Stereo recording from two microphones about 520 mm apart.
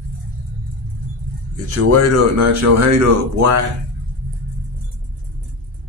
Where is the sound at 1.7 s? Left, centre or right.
Right.